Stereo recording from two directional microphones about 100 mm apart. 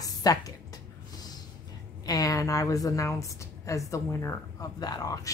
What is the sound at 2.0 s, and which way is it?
Speech, 35° left (ahead or behind).